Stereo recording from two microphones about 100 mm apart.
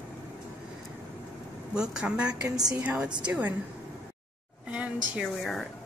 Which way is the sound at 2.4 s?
40° right (ahead or behind).